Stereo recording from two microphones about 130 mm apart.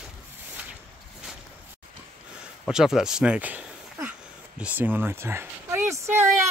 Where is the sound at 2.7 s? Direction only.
5° right (ahead or behind).